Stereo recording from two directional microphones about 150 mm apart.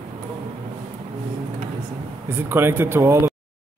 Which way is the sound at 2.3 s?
15° right (ahead or behind).